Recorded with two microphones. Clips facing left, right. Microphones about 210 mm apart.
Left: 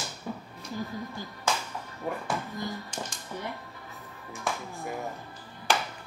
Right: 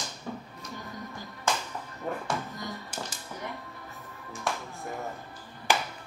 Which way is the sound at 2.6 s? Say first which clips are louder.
Left 2 dB; 5° right (ahead or behind).